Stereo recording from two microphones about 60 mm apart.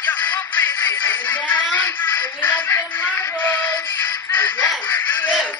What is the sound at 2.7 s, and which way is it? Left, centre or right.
Music, left.